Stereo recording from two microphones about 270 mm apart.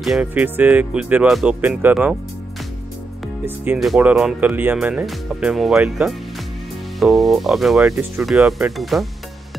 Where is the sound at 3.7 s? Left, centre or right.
Centre.